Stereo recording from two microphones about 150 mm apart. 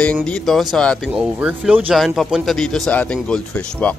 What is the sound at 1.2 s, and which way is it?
Speech, 10° right (ahead or behind).